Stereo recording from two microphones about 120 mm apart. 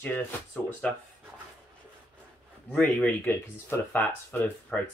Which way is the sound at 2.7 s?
5° left (ahead or behind).